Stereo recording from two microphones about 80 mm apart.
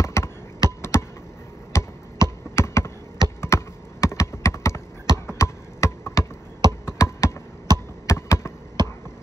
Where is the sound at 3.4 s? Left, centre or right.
Left.